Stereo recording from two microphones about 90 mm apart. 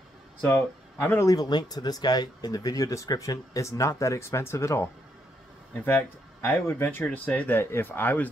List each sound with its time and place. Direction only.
1.0 s speech: 25° left (ahead or behind)
1.3 s speech: 50° left (ahead or behind); by 8.3 s 20° left (ahead or behind)